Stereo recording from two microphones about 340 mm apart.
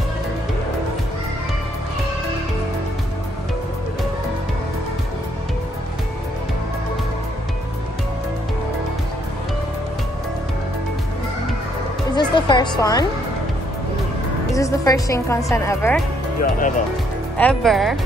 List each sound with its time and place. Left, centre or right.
12.2 s music: centre
14.5 s a woman's voice: centre
16.3 s speech: left
17.4 s speech: centre